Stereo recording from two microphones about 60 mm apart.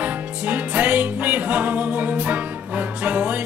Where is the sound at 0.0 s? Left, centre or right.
Right.